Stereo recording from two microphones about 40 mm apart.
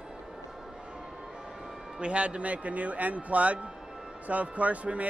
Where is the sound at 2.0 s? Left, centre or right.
Right.